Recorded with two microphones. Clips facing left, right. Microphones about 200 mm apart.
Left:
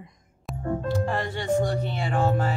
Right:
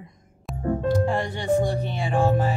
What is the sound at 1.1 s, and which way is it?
Music, 15° right (ahead or behind).